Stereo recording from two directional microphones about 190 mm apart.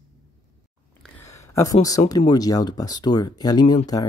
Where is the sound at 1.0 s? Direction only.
15° left (ahead or behind).